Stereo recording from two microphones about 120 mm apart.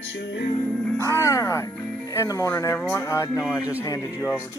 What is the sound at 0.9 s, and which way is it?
Music, 20° left (ahead or behind).